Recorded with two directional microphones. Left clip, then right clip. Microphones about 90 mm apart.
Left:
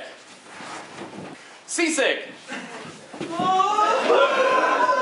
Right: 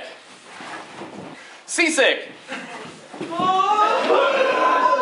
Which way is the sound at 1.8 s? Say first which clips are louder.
Right 4 dB; 25° right (ahead or behind).